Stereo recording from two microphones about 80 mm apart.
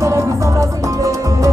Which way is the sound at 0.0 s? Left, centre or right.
Right.